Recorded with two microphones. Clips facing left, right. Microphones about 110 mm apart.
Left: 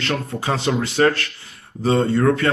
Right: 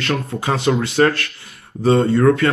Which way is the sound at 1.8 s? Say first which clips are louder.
Right 3 dB; 30° right (ahead or behind).